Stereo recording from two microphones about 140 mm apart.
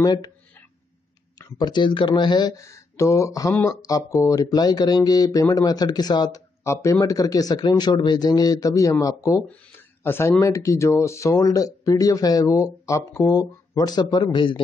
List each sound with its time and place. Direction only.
0.0 s speech: 30° left (ahead or behind)
1.6 s speech: 35° left (ahead or behind)
9.5 s a sound: 15° left (ahead or behind)
10.4 s speech: 20° left (ahead or behind)